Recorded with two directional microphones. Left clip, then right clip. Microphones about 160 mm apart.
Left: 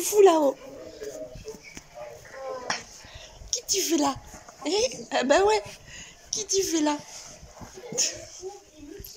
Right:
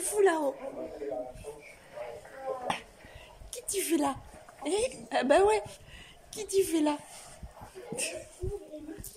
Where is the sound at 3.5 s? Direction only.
5° right (ahead or behind).